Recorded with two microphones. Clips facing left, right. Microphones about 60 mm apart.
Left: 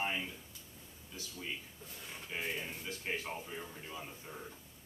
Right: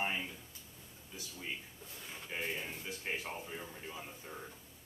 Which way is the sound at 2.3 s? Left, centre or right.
Centre.